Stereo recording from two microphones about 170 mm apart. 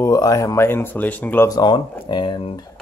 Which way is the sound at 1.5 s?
25° left (ahead or behind).